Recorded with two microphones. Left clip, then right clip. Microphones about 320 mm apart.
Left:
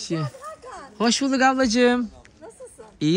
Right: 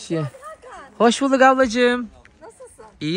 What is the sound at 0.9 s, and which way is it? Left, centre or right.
Speech, centre.